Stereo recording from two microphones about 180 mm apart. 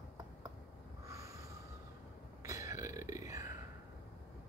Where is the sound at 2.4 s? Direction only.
20° right (ahead or behind).